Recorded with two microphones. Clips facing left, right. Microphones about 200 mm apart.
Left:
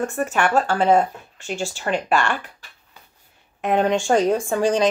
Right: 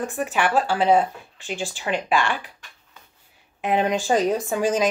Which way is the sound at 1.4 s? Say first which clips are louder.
Left 3 dB; 45° left (ahead or behind).